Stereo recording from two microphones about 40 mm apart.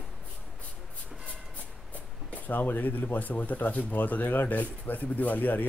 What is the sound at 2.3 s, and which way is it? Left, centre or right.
Speech, left.